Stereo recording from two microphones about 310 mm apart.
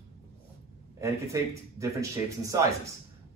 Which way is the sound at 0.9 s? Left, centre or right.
Centre.